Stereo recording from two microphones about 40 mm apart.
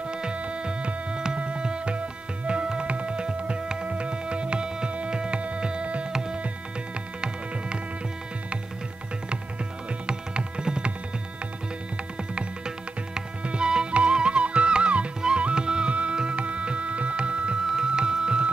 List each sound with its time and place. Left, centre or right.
0.1 s music: right
10.0 s music: right
12.4 s music: centre
17.6 s music: centre